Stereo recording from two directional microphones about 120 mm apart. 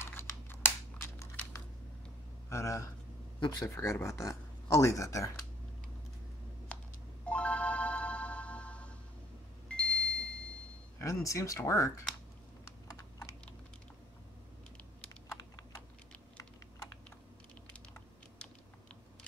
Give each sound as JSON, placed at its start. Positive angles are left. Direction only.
{"t": 0.0, "sound": "computer keyboard", "side_deg": 20}
{"t": 2.5, "sound": "speech", "side_deg": 25}
{"t": 6.7, "sound": "telephone dialing", "side_deg": 10}
{"t": 7.2, "sound": "music", "side_deg": 10}
{"t": 9.7, "sound": "a sound", "side_deg": 10}
{"t": 11.2, "sound": "speech", "side_deg": 25}